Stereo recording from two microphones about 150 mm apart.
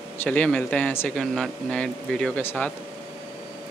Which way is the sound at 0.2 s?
10° left (ahead or behind).